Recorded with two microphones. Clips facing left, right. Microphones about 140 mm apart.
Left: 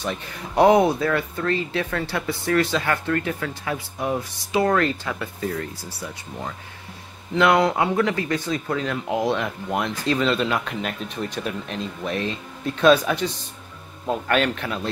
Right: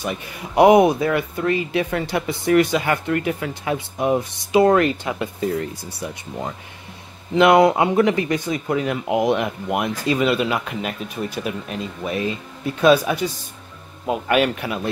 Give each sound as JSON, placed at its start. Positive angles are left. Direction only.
{"t": 0.0, "sound": "speech", "side_deg": -10}